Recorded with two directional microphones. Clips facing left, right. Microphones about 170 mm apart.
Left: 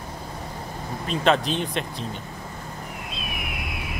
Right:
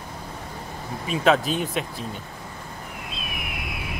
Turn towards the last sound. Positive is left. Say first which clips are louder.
# even
turn(degrees=0)  # may be behind; listen again after turning